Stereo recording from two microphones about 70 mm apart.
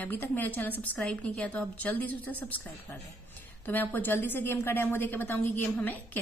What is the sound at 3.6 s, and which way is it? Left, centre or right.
A woman's voice, left.